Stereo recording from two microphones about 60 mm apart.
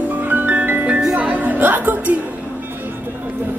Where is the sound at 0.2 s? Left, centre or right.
Right.